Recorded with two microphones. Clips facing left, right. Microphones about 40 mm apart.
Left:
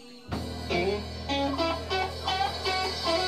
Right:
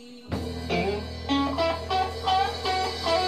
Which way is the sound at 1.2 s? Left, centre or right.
Right.